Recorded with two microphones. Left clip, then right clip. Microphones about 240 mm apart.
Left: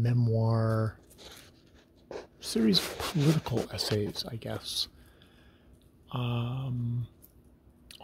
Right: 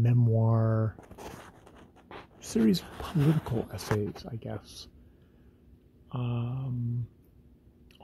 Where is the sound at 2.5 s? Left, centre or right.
Centre.